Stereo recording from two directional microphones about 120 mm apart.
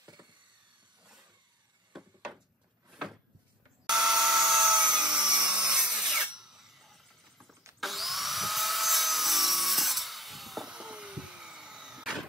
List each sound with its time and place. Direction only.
0.0 s a sound: 35° right (ahead or behind)
1.9 s wood: 5° right (ahead or behind)
2.9 s a sound: 5° right (ahead or behind)
3.9 s wood: 5° right (ahead or behind)
4.9 s tools: 5° right (ahead or behind)
7.8 s wood: centre (ahead or behind)